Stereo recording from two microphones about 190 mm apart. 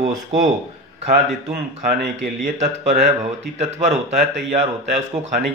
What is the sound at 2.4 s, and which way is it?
Speech, 40° right (ahead or behind).